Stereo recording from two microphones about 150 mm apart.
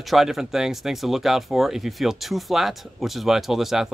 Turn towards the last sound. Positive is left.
turn(degrees=0)  # may be behind; listen again after turning